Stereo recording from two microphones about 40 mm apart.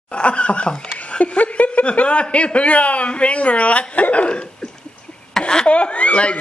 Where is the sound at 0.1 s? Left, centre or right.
Left.